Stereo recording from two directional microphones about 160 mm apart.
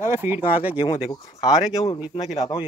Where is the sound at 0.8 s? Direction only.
35° left (ahead or behind).